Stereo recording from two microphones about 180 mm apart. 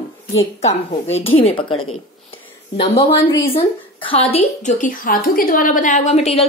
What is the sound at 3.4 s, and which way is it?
A woman's voice, 30° left (ahead or behind).